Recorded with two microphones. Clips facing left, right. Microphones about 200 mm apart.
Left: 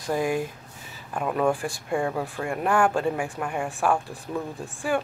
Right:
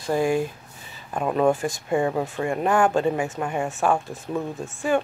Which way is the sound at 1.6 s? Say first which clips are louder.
Right 4 dB; 5° right (ahead or behind).